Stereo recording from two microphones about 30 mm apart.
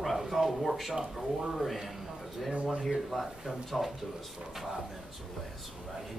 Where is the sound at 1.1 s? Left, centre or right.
Centre.